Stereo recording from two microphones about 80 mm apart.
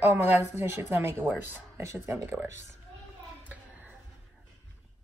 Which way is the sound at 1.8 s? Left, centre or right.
Right.